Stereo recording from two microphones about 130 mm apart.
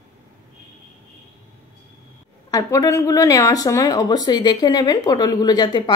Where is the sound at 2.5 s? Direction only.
25° left (ahead or behind).